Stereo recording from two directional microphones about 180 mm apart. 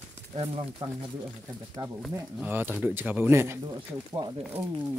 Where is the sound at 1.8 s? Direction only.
20° right (ahead or behind).